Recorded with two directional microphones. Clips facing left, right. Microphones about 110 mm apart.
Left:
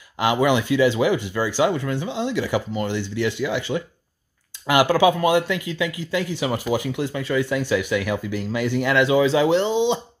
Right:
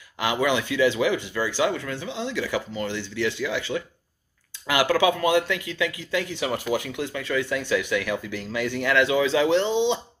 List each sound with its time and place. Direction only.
0.2 s speech: 20° left (ahead or behind)